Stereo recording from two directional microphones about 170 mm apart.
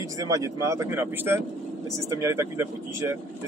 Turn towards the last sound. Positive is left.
turn(degrees=-15)  # may be behind; listen again after turning